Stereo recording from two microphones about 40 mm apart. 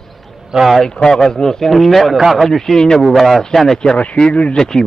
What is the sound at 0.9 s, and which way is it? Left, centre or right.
A man's voice, centre.